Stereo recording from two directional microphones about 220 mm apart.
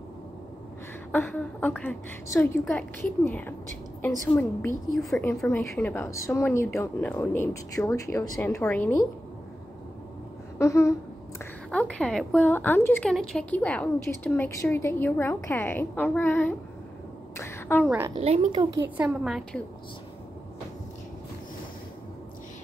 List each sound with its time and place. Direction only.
1.1 s speech: 10° left (ahead or behind)
10.6 s speech: 15° left (ahead or behind)
17.4 s a sound: 10° left (ahead or behind)
17.8 s a woman's voice: 10° right (ahead or behind)
18.2 s speech: 25° right (ahead or behind)
18.9 s a woman's voice: 5° right (ahead or behind)